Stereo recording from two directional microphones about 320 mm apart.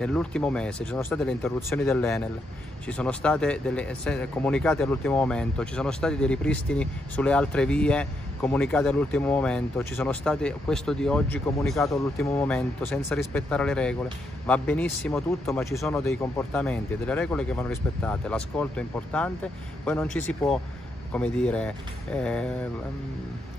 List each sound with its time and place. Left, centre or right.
0.0 s speech: centre